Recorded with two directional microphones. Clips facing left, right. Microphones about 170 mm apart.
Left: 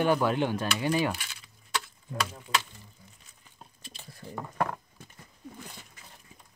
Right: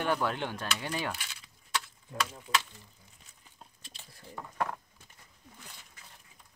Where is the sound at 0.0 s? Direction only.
10° left (ahead or behind).